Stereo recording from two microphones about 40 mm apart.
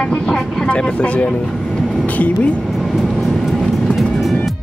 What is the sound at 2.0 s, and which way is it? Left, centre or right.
Speech, left.